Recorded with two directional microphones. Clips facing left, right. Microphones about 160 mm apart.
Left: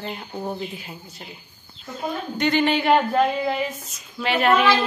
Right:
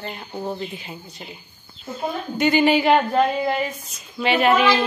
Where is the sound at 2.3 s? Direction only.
5° right (ahead or behind).